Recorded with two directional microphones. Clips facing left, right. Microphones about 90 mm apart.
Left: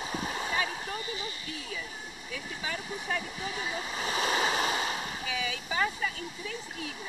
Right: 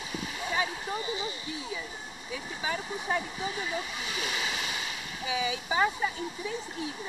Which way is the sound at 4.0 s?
40° left (ahead or behind).